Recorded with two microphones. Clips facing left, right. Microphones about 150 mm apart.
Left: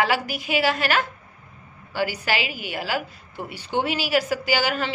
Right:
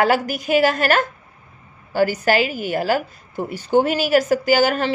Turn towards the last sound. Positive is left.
turn(degrees=-45)  # may be behind; listen again after turning